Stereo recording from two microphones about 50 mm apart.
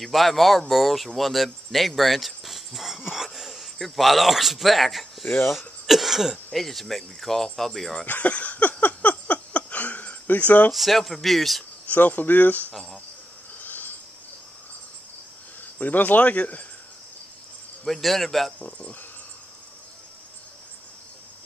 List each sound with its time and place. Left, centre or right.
0.0 s speech: centre
5.2 s speech: left
5.9 s speech: centre
8.0 s a sound: left
10.7 s speech: centre
11.9 s speech: left
13.6 s a sound: left
15.6 s speech: left
17.8 s speech: centre
18.6 s speech: left